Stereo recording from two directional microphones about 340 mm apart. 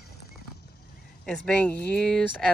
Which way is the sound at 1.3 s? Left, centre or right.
Centre.